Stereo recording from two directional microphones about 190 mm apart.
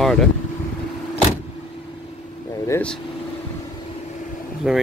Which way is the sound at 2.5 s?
15° left (ahead or behind).